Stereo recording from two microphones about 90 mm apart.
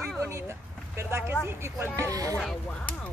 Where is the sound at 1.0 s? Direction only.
30° right (ahead or behind).